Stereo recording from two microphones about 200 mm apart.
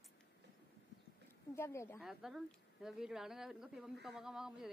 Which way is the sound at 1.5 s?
15° left (ahead or behind).